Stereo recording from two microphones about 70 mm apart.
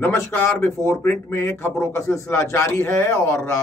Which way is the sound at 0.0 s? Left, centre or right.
Left.